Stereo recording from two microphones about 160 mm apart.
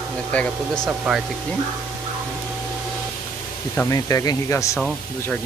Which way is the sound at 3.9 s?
20° left (ahead or behind).